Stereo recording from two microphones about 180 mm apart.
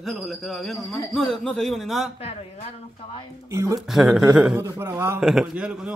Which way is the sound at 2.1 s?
35° left (ahead or behind).